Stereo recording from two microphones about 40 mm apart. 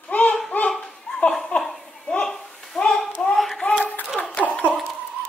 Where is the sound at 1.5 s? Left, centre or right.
Left.